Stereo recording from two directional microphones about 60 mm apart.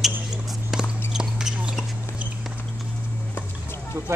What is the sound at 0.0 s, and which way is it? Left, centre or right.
Basketball bounce, centre.